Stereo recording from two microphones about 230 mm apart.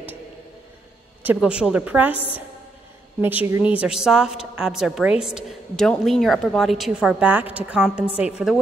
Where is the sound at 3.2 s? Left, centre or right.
Centre.